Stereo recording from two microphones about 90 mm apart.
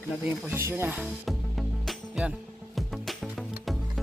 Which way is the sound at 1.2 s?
Centre (ahead or behind).